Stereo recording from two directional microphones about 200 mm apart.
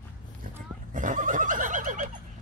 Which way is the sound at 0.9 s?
40° right (ahead or behind).